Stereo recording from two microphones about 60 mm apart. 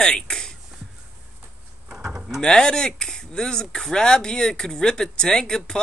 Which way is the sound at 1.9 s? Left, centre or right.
Centre.